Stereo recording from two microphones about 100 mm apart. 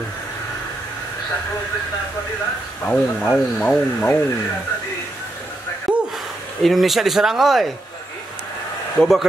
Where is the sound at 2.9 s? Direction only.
5° left (ahead or behind).